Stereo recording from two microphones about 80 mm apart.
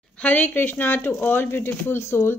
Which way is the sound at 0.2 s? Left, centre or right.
Centre.